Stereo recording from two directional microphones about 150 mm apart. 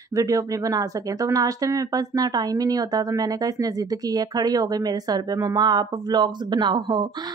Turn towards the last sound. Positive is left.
turn(degrees=-30)  # may be behind; listen again after turning